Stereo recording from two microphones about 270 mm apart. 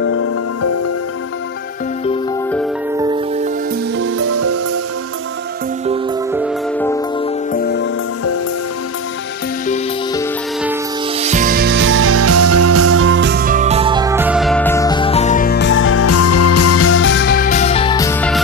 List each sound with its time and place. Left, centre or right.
0.0 s music: left
3.0 s music: centre
4.0 s music: right
7.5 s music: left
11.1 s music: right; by 18.4 s centre